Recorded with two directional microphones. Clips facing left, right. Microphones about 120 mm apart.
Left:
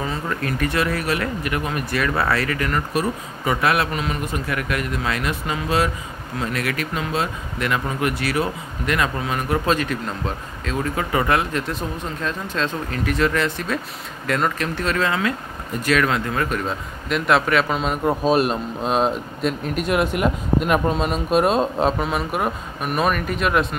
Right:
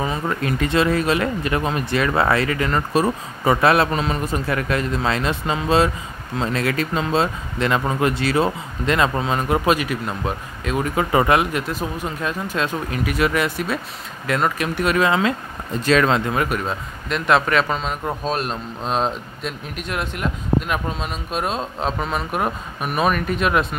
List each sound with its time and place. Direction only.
0.0 s speech: 20° right (ahead or behind)
9.7 s speech: 10° right (ahead or behind)
11.5 s speech: 5° right (ahead or behind); by 16.4 s 20° right (ahead or behind)
16.4 s speech: 5° right (ahead or behind)